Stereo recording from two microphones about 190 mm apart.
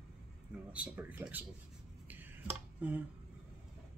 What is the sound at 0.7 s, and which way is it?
Speech, 5° right (ahead or behind).